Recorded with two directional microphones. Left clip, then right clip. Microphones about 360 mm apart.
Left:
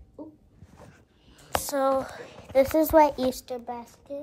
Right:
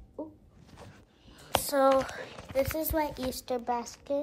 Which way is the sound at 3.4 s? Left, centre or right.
Right.